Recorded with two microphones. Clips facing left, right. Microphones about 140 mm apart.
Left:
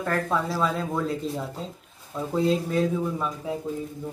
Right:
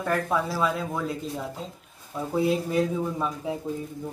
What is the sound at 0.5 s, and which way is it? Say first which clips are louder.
Speech: left 1 dB; 5° right (ahead or behind).